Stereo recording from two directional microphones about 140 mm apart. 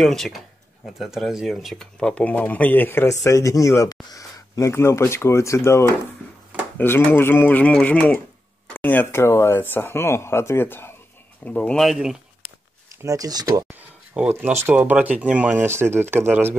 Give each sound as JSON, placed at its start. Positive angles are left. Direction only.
{"t": 0.0, "sound": "speech", "side_deg": 0}
{"t": 13.0, "sound": "speech", "side_deg": -25}
{"t": 13.7, "sound": "speech", "side_deg": -10}